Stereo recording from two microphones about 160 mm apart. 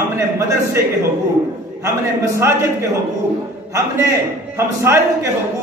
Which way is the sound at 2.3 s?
15° right (ahead or behind).